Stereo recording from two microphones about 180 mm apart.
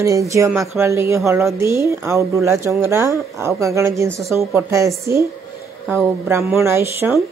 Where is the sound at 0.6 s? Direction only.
15° right (ahead or behind).